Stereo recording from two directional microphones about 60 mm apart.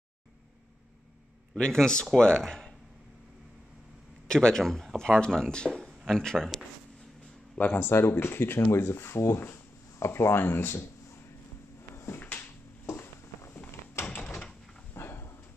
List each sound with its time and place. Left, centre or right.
1.6 s speech: centre
4.3 s speech: centre
7.5 s speech: left
7.8 s speech: left
11.9 s a sound: left
15.0 s dog: left